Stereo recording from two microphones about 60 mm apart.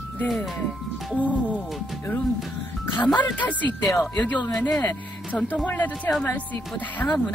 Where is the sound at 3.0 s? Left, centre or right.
Left.